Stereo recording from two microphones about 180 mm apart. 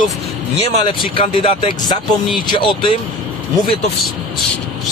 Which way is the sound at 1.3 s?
30° left (ahead or behind).